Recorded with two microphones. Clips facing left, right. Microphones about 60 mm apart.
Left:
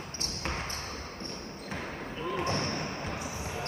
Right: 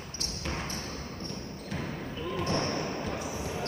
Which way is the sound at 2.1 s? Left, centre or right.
Left.